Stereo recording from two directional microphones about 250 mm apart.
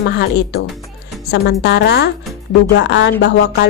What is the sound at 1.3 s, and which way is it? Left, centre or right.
Speech, left.